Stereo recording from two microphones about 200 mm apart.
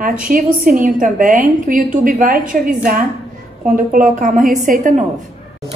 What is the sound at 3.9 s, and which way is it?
A woman's voice, 40° right (ahead or behind).